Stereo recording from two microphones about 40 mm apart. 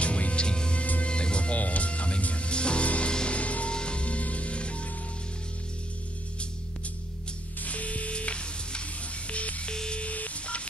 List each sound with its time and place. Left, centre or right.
0.0 s music: left
7.6 s music: left
9.7 s music: left
10.0 s telephone dialing: left